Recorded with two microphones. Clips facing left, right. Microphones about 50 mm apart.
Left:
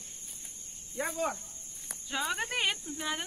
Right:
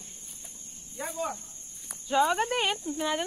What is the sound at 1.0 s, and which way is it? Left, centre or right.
Speech, left.